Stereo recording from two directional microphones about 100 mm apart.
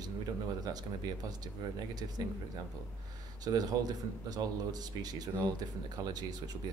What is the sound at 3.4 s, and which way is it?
A man's voice, 40° right (ahead or behind).